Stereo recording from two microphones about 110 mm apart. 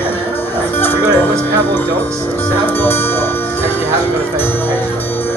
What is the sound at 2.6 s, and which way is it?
Speech, 20° left (ahead or behind).